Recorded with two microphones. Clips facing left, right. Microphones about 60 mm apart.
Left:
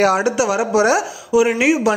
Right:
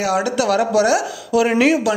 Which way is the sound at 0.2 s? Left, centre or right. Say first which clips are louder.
Even; centre.